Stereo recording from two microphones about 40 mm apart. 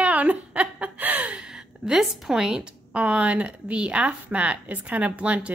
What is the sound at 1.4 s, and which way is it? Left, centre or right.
A woman's voice, centre.